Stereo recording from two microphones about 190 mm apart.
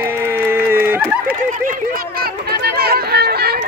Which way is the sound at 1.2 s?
45° right (ahead or behind).